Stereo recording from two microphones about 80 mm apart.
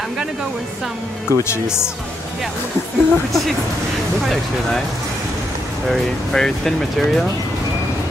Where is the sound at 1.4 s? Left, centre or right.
Left.